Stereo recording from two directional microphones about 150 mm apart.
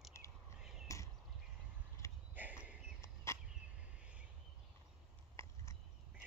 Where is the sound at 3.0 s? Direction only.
20° left (ahead or behind).